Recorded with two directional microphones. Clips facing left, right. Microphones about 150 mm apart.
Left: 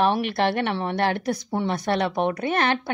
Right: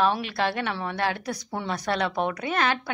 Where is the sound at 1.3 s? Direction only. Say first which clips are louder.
Left 5 dB; 25° left (ahead or behind).